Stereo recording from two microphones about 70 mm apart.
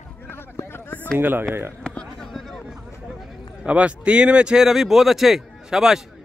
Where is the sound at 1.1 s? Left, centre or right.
Right.